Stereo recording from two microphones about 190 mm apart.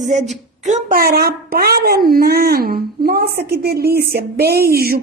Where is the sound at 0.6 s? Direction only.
45° right (ahead or behind).